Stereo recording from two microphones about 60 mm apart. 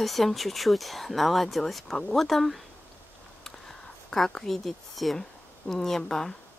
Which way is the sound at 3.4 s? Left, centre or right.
Centre.